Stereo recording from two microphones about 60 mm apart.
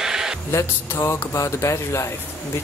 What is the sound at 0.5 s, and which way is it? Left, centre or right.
Speech, left.